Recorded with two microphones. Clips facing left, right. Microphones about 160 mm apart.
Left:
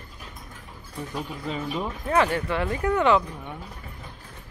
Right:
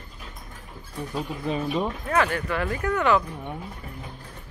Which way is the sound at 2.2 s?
25° left (ahead or behind).